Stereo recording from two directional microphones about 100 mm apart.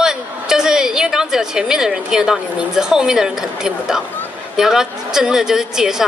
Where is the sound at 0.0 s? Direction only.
5° right (ahead or behind).